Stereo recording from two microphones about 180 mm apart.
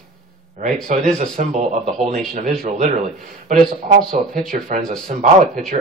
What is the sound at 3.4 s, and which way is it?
Speech, 45° right (ahead or behind).